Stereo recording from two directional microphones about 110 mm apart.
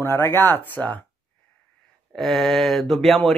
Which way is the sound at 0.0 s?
20° left (ahead or behind).